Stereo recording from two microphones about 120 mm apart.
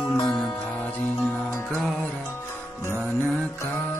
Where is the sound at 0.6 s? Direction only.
15° left (ahead or behind).